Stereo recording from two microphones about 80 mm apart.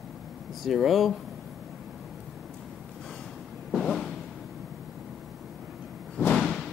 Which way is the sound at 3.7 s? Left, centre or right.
Centre.